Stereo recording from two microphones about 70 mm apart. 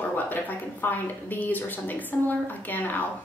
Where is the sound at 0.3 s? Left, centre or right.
Left.